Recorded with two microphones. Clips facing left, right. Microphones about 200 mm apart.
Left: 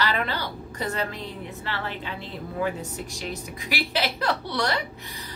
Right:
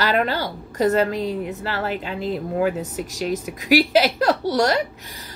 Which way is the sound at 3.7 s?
45° right (ahead or behind).